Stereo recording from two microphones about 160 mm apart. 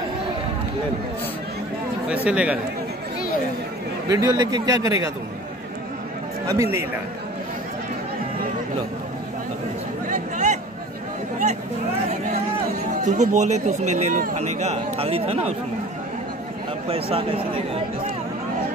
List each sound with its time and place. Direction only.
2.0 s speech: 5° right (ahead or behind)
4.1 s speech: 25° right (ahead or behind)
6.4 s speech: 20° right (ahead or behind)
10.0 s a sound: 50° right (ahead or behind)
13.0 s speech: 50° right (ahead or behind)